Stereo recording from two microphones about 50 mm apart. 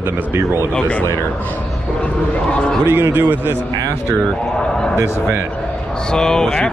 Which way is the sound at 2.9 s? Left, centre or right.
Right.